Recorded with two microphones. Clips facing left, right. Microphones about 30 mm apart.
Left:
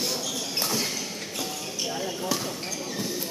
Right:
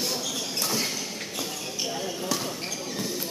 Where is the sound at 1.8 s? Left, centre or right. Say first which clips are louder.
Left 1 dB; centre.